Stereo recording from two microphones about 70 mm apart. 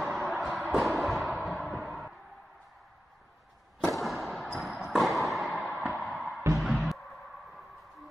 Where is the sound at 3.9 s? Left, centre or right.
Centre.